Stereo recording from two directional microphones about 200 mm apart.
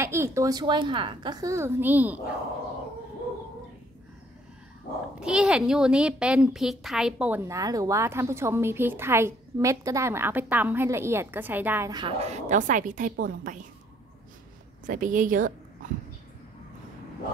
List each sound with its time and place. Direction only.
0.0 s a woman's voice: 15° right (ahead or behind)
5.2 s a woman's voice: 5° right (ahead or behind)
11.9 s a woman's voice: 25° right (ahead or behind); by 13.7 s 45° right (ahead or behind)
14.9 s a woman's voice: 40° right (ahead or behind)